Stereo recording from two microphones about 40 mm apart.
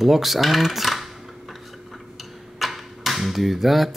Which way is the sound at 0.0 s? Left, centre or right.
Centre.